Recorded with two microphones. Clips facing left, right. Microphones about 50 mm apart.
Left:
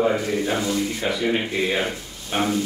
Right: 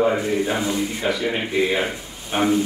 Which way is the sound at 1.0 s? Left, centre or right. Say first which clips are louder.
Even; centre.